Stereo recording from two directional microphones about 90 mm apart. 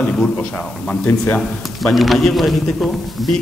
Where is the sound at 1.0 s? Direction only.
20° left (ahead or behind).